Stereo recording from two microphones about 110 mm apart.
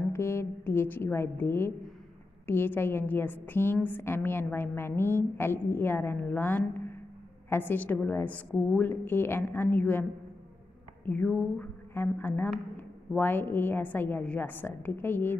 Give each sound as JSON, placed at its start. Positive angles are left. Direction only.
{"t": 0.1, "sound": "a woman's voice", "side_deg": 25}
{"t": 11.1, "sound": "a woman's voice", "side_deg": 15}